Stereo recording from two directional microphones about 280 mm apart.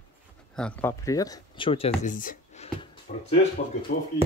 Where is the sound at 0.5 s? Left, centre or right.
Centre; by 3.3 s left.